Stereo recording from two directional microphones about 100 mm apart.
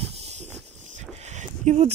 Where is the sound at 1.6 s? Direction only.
90° right.